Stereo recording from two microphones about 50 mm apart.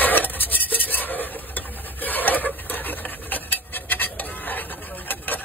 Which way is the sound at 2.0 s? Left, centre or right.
Left.